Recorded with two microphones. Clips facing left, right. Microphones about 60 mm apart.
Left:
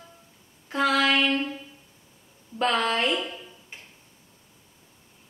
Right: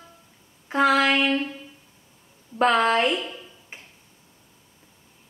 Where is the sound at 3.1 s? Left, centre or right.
Centre.